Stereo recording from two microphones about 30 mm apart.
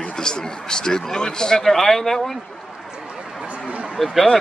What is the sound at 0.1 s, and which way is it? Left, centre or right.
Speech, left.